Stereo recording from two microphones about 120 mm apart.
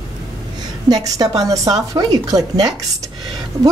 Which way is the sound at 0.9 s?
30° right (ahead or behind).